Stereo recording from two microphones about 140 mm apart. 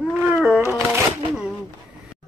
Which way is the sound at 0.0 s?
5° right (ahead or behind).